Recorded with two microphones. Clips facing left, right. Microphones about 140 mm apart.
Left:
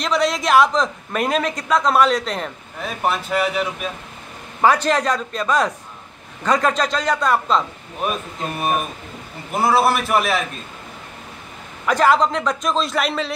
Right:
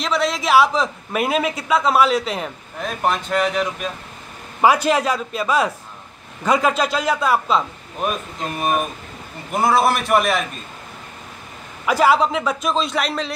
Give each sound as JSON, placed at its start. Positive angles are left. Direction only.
{"t": 0.0, "sound": "a man's voice", "side_deg": 0}
{"t": 4.6, "sound": "a man's voice", "side_deg": -10}
{"t": 9.5, "sound": "a man's voice", "side_deg": 0}
{"t": 11.8, "sound": "a man's voice", "side_deg": -5}